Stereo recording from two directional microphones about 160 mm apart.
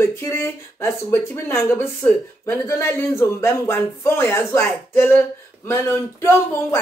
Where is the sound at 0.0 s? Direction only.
15° left (ahead or behind).